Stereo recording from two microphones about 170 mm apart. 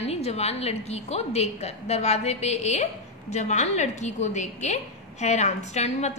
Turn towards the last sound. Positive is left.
turn(degrees=40)  # may be behind; listen again after turning